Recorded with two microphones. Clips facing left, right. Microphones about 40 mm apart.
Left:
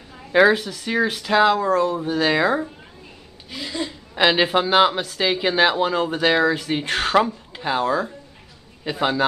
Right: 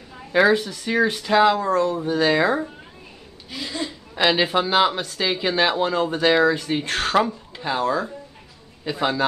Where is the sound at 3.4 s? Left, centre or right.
Centre.